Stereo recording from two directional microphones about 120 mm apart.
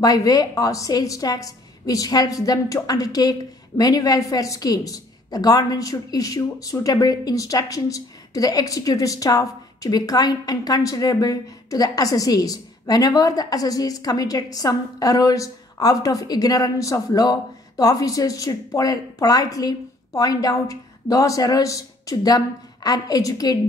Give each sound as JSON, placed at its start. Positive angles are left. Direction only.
{"t": 0.0, "sound": "a woman's voice", "side_deg": 30}